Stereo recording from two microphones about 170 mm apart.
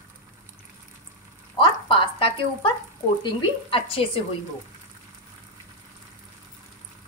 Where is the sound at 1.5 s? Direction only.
30° left (ahead or behind).